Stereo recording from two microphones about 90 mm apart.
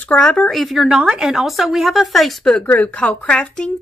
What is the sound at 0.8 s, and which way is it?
A woman's voice, 10° right (ahead or behind).